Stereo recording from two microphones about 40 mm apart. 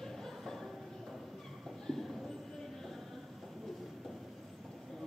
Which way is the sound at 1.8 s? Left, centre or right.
Centre.